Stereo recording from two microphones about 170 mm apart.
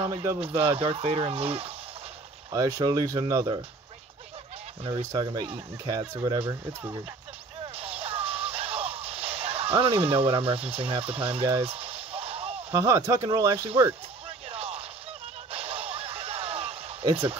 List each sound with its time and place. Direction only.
0.0 s speech: 25° right (ahead or behind)
2.5 s speech: 20° right (ahead or behind)
5.1 s speech: 25° right (ahead or behind)
7.7 s music: 35° right (ahead or behind)
12.7 s speech: 15° right (ahead or behind)
14.5 s a sound: 35° right (ahead or behind)